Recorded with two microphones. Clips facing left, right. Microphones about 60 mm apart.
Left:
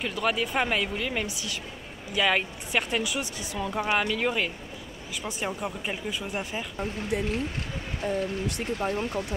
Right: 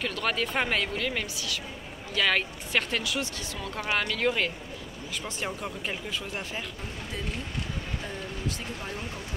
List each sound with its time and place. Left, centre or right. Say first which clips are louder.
0.0 s speech: left 2 dB; centre
6.8 s speech: left 8 dB; left
8.5 s speech: left 8 dB; left